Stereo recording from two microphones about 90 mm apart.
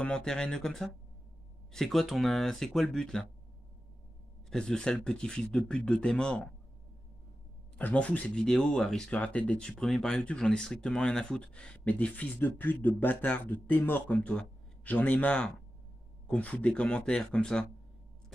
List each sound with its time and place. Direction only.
0.0 s speech: 10° left (ahead or behind)
4.5 s speech: 10° left (ahead or behind)
7.7 s speech: 15° left (ahead or behind)